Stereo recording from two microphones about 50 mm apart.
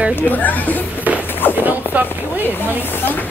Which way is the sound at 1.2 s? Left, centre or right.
Left.